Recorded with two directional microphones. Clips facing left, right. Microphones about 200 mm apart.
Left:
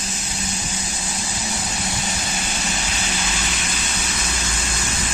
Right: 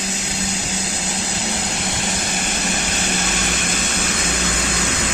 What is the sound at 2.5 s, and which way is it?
Vehicle, 55° right (ahead or behind).